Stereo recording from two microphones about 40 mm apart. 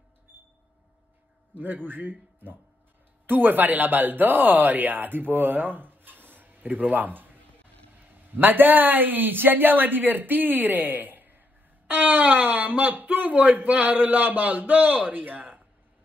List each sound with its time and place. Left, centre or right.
1.5 s a man's voice: right